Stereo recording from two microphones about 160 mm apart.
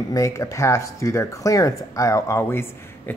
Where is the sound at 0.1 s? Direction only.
20° left (ahead or behind).